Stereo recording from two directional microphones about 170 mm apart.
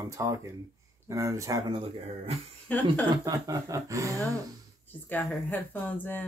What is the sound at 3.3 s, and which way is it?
Speech, 20° right (ahead or behind).